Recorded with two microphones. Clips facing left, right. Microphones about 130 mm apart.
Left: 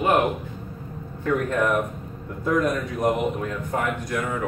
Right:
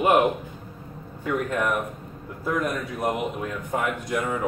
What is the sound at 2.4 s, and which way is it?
A man's voice, centre (ahead or behind).